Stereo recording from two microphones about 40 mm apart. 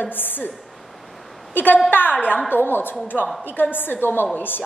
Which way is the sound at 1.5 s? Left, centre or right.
Left.